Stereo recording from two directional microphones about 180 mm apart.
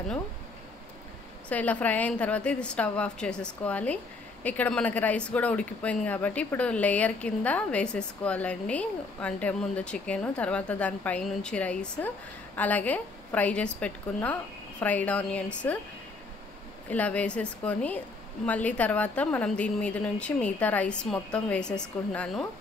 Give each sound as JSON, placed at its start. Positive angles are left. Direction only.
{"t": 1.5, "sound": "a woman's voice", "side_deg": 10}
{"t": 16.9, "sound": "a woman's voice", "side_deg": 10}